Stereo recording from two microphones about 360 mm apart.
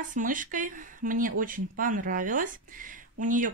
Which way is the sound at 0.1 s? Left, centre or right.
Right.